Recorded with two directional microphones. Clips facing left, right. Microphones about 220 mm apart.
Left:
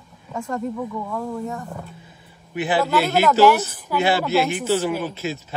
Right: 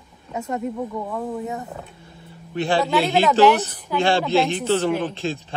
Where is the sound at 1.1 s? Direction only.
15° right (ahead or behind).